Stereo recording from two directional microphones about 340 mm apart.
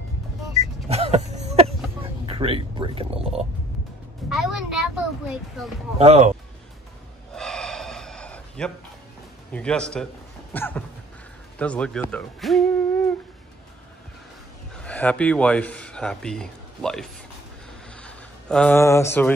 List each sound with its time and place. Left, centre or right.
0.8 s a sound: centre
2.2 s speech: centre
4.3 s a child's voice: centre
5.9 s speech: centre
7.3 s gasp: centre
9.5 s a child's voice: centre
10.5 s a sound: centre
11.5 s speech: centre
14.8 s speech: centre